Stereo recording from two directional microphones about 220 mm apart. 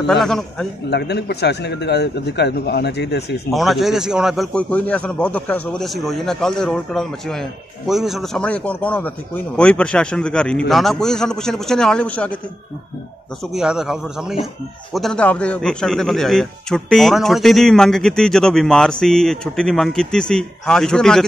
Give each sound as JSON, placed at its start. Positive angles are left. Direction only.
{"t": 0.0, "sound": "a man's voice", "side_deg": 0}
{"t": 0.8, "sound": "speech", "side_deg": 50}
{"t": 3.5, "sound": "a man's voice", "side_deg": 0}
{"t": 13.4, "sound": "a man's voice", "side_deg": 0}